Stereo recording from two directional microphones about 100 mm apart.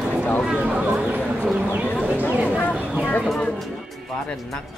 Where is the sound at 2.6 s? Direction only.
15° left (ahead or behind).